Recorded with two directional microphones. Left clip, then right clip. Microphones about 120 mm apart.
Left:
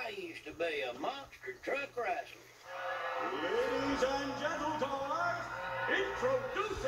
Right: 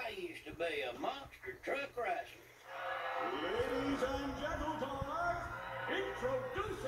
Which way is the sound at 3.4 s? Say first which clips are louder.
Left 6 dB; centre (ahead or behind).